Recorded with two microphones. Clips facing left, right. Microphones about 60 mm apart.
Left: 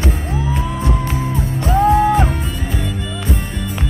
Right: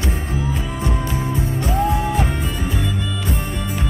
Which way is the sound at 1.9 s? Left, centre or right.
Left.